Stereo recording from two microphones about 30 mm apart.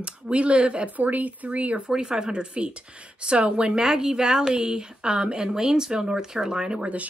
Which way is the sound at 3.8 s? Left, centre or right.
Centre.